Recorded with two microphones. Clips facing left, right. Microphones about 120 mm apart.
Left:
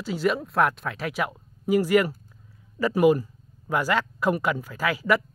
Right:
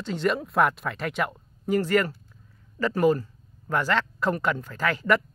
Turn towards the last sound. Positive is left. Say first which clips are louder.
# even
turn(degrees=5)  # may be behind; listen again after turning